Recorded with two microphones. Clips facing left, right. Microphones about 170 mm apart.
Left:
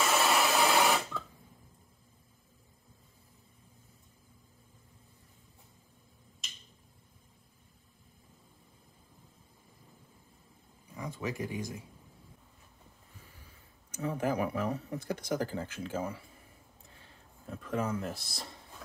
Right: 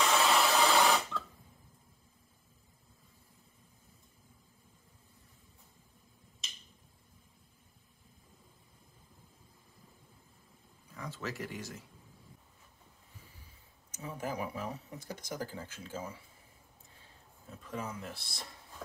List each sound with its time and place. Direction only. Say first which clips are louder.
0.0 s a sound: even; 5° left (ahead or behind)
10.9 s speech: left 4 dB; 15° left (ahead or behind)
14.0 s speech: left 7 dB; 65° left (ahead or behind)
17.5 s speech: left 7 dB; 60° left (ahead or behind); by 18.4 s 45° left (ahead or behind)